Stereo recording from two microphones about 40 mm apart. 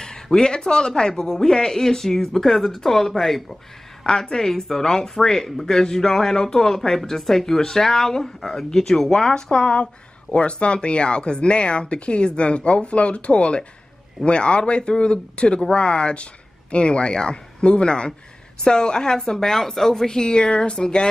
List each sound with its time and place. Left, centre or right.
0.0 s speech: centre
4.0 s speech: centre
9.3 s speech: left